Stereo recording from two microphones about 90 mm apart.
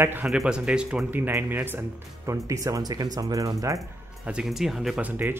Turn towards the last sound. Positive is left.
turn(degrees=-20)  # may be behind; listen again after turning